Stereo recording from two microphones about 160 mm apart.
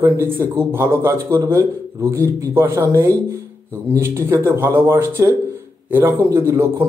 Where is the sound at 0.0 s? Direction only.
15° right (ahead or behind).